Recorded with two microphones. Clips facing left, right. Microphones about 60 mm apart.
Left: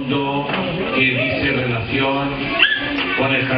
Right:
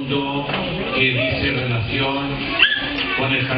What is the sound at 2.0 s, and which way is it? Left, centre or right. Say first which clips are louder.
Speech: left 3 dB; centre.